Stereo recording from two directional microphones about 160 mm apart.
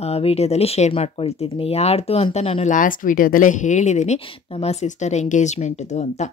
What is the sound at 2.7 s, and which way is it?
Speech, 55° left (ahead or behind).